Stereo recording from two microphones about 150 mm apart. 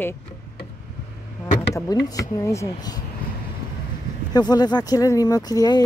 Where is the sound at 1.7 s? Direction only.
25° left (ahead or behind).